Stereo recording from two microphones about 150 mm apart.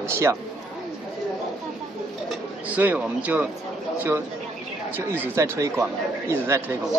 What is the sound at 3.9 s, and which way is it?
Speech, 10° right (ahead or behind).